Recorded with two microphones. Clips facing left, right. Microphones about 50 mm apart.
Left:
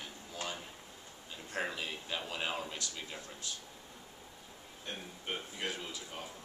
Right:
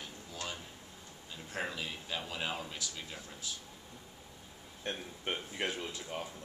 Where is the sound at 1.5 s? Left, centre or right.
Centre.